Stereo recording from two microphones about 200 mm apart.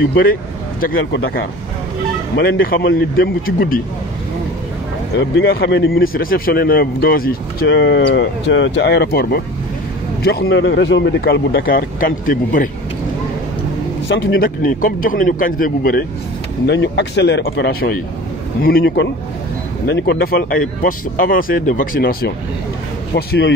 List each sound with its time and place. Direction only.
0.1 s speech: 45° left (ahead or behind)
2.3 s speech: 55° left (ahead or behind)
5.4 s speech: 55° left (ahead or behind)
7.7 s speech: 60° left (ahead or behind); by 12.6 s 40° left (ahead or behind)
14.0 s a man's voice: 70° left (ahead or behind)
14.4 s speech: 45° left (ahead or behind)
16.6 s speech: 60° left (ahead or behind)